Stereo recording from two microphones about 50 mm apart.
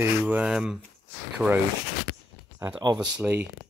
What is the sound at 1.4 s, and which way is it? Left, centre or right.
Speech, right.